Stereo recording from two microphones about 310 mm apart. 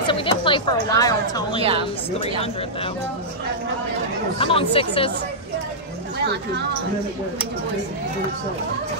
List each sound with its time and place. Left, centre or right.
0.0 s a woman's voice: centre
1.6 s a woman's voice: centre
4.4 s speech: centre